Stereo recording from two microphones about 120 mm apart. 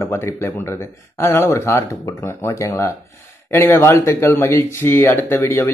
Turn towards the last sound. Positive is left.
turn(degrees=20)  # may be behind; listen again after turning